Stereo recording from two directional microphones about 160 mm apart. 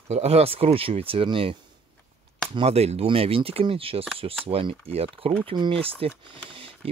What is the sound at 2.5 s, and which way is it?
Speech, 40° right (ahead or behind).